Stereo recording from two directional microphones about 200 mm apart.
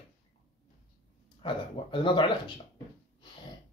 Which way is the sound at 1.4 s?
25° left (ahead or behind).